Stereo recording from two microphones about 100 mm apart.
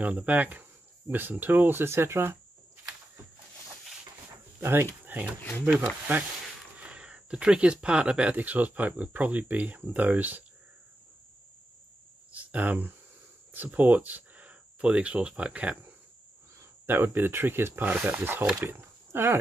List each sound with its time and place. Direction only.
0.0 s speech: 15° right (ahead or behind)
4.6 s speech: 20° right (ahead or behind)
5.0 s a sound: 15° right (ahead or behind)
6.9 s speech: 10° right (ahead or behind)
12.3 s a sound: 15° right (ahead or behind)
13.5 s speech: 15° right (ahead or behind)